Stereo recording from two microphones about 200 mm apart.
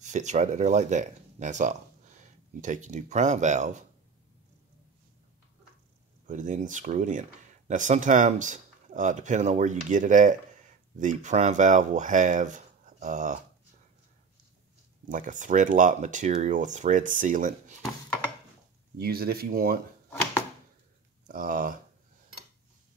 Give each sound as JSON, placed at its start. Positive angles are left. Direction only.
{"t": 0.0, "sound": "speech", "side_deg": -35}
{"t": 6.2, "sound": "speech", "side_deg": -40}
{"t": 15.0, "sound": "speech", "side_deg": -40}
{"t": 18.9, "sound": "speech", "side_deg": -50}
{"t": 21.3, "sound": "speech", "side_deg": -45}